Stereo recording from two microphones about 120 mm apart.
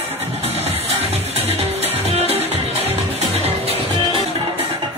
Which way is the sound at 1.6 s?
60° right (ahead or behind).